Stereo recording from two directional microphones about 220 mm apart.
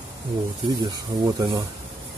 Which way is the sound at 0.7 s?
15° right (ahead or behind).